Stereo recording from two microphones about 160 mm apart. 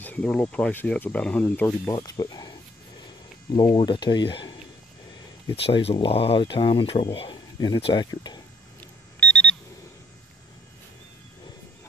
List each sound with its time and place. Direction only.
0.0 s speech: 10° left (ahead or behind)
1.9 s speech: 25° left (ahead or behind)
3.5 s speech: 30° left (ahead or behind)
5.6 s speech: 35° left (ahead or behind)
9.2 s alarm clock: 5° left (ahead or behind)